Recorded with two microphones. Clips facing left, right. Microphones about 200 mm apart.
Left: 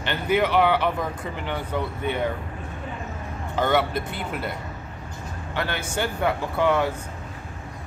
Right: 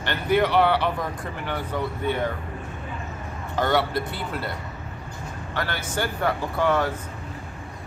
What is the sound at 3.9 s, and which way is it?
Speech, 20° left (ahead or behind).